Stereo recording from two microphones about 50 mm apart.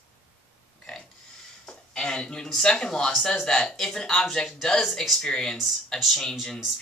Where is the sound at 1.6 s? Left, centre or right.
Centre.